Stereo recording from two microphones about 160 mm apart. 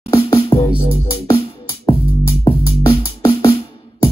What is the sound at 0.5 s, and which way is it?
Music, 30° left (ahead or behind).